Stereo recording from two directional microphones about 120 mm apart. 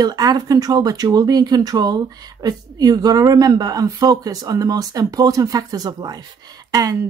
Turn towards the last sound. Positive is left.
turn(degrees=-30)  # may be behind; listen again after turning